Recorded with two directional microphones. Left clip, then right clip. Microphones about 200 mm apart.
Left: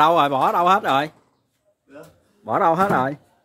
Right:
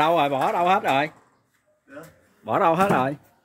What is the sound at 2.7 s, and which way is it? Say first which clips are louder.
Speech: left 2 dB; 10° left (ahead or behind).